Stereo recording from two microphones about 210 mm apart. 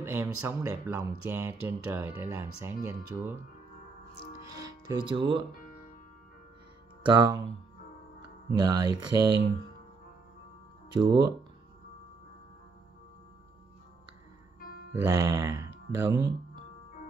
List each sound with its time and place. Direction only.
0.0 s speech: 15° right (ahead or behind)
4.6 s speech: 20° right (ahead or behind)
7.1 s speech: 20° right (ahead or behind)
8.5 s speech: 20° right (ahead or behind)
10.9 s speech: 20° right (ahead or behind)
15.0 s speech: 15° right (ahead or behind)